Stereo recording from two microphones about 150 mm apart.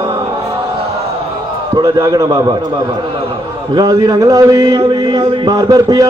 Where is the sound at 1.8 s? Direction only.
25° right (ahead or behind).